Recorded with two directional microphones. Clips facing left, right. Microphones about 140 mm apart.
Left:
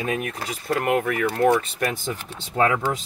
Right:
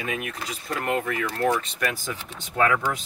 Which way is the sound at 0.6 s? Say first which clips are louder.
Left 5 dB; 60° left (ahead or behind).